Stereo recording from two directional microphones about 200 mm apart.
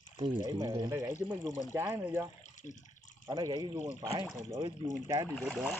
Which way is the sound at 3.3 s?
20° right (ahead or behind).